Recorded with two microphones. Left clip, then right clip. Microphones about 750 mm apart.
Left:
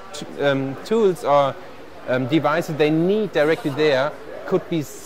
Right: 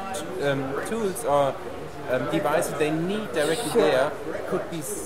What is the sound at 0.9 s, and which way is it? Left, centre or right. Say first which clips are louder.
Speech: left 13 dB; left.